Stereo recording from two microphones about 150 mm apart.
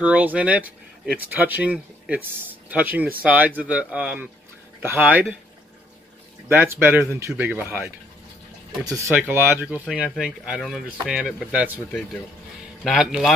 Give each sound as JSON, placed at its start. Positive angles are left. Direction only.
{"t": 0.0, "sound": "speech", "side_deg": -10}
{"t": 6.5, "sound": "speech", "side_deg": -15}
{"t": 9.3, "sound": "speech", "side_deg": -15}
{"t": 9.8, "sound": "speech", "side_deg": 0}
{"t": 12.8, "sound": "speech", "side_deg": 0}